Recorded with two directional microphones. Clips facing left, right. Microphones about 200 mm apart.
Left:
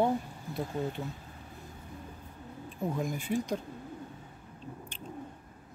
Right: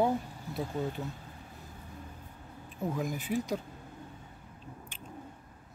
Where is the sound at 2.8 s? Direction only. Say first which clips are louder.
Left 1 dB; centre (ahead or behind).